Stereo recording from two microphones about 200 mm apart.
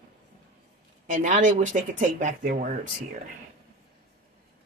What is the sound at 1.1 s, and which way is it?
Speech, 40° right (ahead or behind).